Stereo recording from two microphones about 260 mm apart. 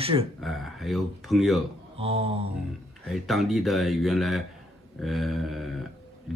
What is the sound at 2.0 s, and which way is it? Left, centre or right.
Speech, right.